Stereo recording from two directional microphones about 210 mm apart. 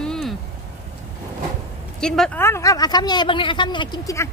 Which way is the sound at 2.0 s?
5° left (ahead or behind).